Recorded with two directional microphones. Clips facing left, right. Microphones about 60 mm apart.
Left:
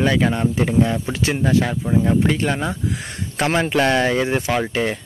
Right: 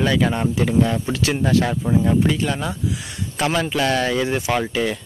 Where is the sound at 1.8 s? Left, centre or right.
Centre.